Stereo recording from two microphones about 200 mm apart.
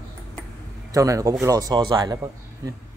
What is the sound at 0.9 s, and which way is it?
Speech, 15° right (ahead or behind).